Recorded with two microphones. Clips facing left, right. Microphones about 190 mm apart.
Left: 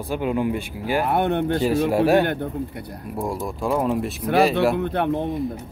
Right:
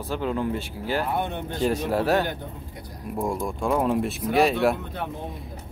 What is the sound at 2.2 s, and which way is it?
Speech, 60° left (ahead or behind).